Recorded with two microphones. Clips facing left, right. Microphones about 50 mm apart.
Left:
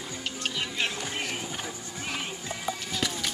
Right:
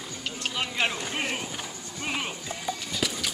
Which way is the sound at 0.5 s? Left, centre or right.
Right.